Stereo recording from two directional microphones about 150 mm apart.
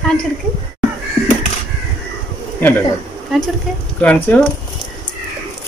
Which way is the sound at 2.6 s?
15° left (ahead or behind).